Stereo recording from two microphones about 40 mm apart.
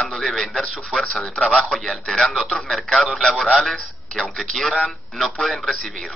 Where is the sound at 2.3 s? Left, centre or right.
Centre.